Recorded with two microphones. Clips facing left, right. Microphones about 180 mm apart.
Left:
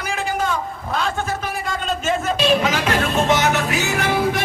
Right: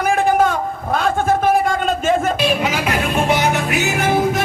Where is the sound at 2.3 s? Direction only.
10° right (ahead or behind).